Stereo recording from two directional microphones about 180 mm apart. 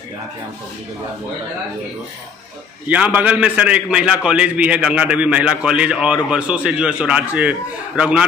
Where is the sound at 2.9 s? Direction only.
10° right (ahead or behind).